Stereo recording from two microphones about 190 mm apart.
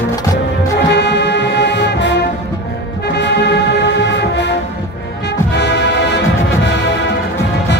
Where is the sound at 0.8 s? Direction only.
65° left (ahead or behind).